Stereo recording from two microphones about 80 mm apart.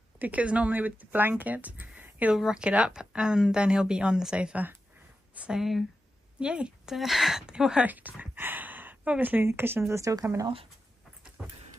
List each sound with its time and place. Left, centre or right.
0.2 s speech: centre
2.3 s speech: centre
5.6 s speech: centre
6.4 s a woman's voice: centre; by 10.1 s right
11.4 s dog: centre